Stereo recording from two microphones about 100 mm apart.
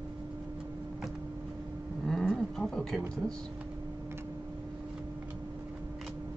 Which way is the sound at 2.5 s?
5° left (ahead or behind).